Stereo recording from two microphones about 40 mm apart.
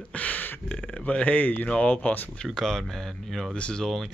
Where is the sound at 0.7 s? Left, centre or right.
Left.